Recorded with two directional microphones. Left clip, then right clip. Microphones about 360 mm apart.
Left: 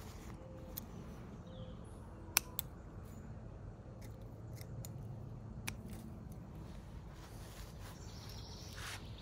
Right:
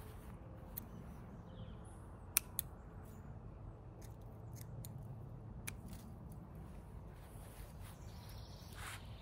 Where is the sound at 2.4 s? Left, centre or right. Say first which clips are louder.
Left 6 dB; centre.